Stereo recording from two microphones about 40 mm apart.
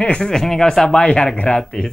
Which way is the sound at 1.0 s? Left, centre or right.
Left.